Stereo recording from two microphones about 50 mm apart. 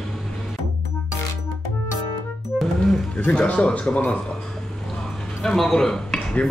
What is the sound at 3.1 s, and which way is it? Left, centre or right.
Speech, left.